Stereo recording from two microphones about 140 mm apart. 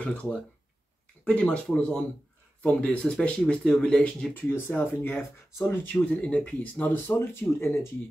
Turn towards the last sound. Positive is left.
turn(degrees=15)  # may be behind; listen again after turning